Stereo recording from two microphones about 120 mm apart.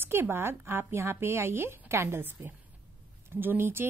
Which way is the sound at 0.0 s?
20° right (ahead or behind).